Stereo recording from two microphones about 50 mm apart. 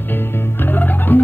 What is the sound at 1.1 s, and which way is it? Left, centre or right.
Music, left.